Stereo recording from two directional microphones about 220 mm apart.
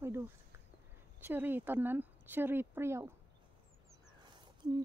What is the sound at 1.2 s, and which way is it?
Speech, 10° right (ahead or behind).